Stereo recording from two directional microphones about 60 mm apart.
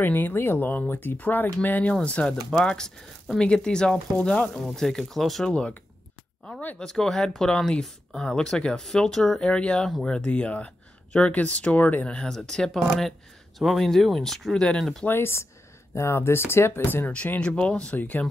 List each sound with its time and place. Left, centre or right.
0.0 s speech: left
2.0 s speech: centre
4.7 s speech: centre
5.5 s speech: centre
6.8 s speech: centre; by 12.1 s left
12.1 s speech: centre
15.0 s speech: left
16.8 s speech: left
17.9 s speech: left